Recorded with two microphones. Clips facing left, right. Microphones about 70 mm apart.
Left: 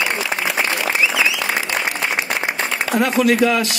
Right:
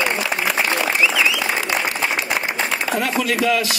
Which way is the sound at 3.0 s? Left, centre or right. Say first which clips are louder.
Left 9 dB; left.